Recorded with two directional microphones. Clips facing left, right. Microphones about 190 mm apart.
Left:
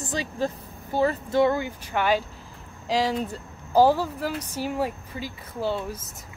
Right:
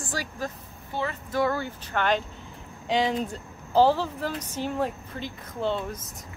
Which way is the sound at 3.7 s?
10° left (ahead or behind).